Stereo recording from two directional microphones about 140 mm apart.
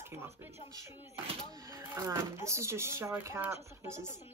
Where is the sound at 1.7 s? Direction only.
20° right (ahead or behind).